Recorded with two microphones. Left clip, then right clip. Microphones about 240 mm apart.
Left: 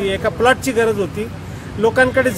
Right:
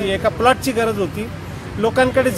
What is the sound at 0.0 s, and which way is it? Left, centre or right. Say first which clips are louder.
Speech: even; centre.